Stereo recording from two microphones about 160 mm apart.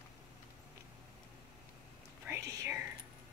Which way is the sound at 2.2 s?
15° right (ahead or behind).